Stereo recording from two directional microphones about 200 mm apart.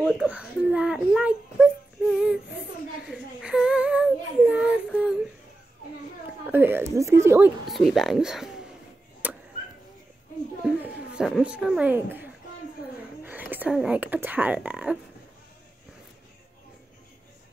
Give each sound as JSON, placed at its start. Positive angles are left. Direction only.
{"t": 0.0, "sound": "a child's voice", "side_deg": -5}
{"t": 3.1, "sound": "child singing", "side_deg": -5}
{"t": 6.5, "sound": "speech", "side_deg": -10}
{"t": 9.2, "sound": "chop", "side_deg": -10}
{"t": 10.6, "sound": "a sound", "side_deg": -5}
{"t": 13.2, "sound": "speech", "side_deg": -10}